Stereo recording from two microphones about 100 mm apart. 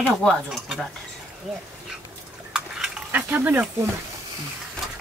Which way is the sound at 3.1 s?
20° right (ahead or behind).